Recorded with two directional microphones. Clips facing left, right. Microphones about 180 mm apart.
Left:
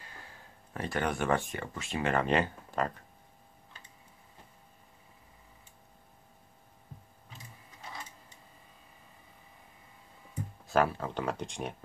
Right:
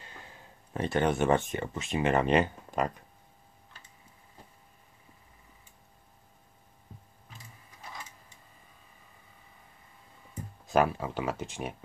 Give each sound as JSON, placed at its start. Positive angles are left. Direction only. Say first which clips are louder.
{"t": 0.0, "sound": "speech", "louder": "right 2 dB", "side_deg": -20}
{"t": 10.7, "sound": "speech", "louder": "right 2 dB", "side_deg": -15}